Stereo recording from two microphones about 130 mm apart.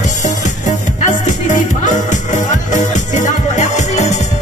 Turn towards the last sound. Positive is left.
turn(degrees=65)  # may be behind; listen again after turning